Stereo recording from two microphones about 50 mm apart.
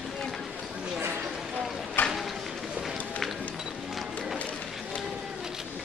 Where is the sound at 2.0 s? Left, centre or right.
Left.